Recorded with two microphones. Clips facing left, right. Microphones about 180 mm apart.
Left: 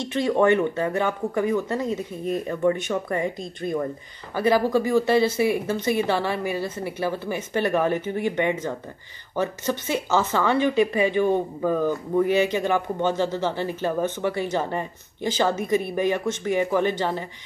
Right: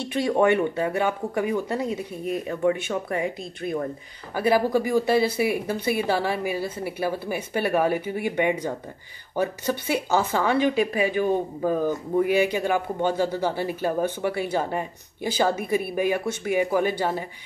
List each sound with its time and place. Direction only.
0.0 s speech: 10° right (ahead or behind)